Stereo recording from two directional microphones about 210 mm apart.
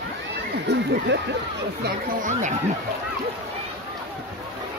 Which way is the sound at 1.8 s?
35° right (ahead or behind).